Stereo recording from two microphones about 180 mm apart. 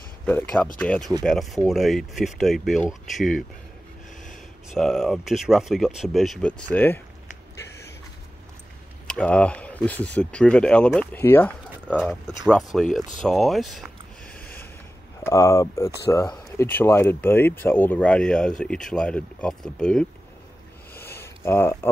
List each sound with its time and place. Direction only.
0.7 s speech: 5° left (ahead or behind)
4.7 s speech: centre (ahead or behind)
9.0 s speech: 5° left (ahead or behind)
13.2 s a sound: centre (ahead or behind)
15.2 s speech: 15° left (ahead or behind)
20.9 s a sound: 15° left (ahead or behind)